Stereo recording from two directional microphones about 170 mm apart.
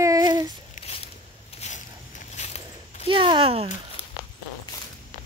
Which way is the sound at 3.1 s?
30° right (ahead or behind).